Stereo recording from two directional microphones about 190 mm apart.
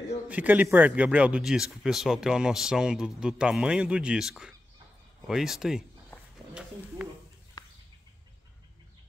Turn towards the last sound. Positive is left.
turn(degrees=20)  # may be behind; listen again after turning